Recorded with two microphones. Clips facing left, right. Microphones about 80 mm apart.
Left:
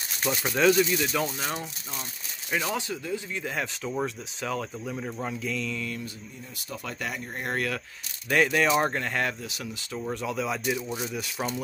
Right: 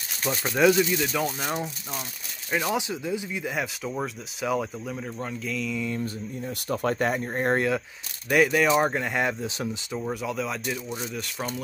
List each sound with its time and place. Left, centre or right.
0.5 s speech: centre
4.8 s speech: centre
6.7 s speech: right
7.5 s speech: right
8.3 s speech: centre
9.0 s speech: centre